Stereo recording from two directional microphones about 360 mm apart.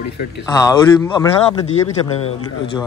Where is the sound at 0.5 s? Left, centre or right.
Centre.